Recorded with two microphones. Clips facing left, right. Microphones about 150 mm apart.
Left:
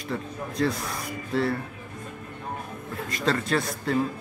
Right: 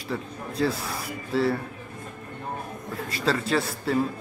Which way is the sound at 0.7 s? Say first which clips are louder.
Even; 30° right (ahead or behind).